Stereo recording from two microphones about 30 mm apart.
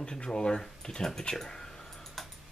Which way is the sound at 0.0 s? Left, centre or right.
Left.